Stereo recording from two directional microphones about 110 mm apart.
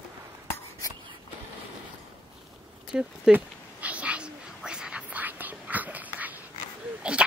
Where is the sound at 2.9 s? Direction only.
5° right (ahead or behind).